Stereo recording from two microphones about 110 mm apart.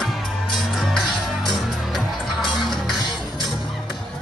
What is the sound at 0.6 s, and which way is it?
Music, centre (ahead or behind).